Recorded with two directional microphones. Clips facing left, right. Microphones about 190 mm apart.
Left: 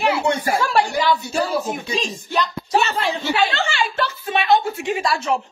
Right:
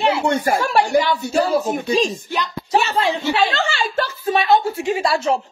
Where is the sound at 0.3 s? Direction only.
45° right (ahead or behind).